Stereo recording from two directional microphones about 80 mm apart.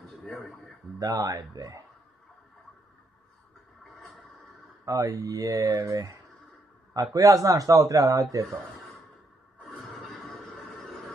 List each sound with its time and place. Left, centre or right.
0.2 s a sound: centre
0.9 s a man's voice: right
3.8 s a sound: centre
4.8 s a man's voice: right
5.9 s speech: right
6.9 s a man's voice: right
9.7 s music: centre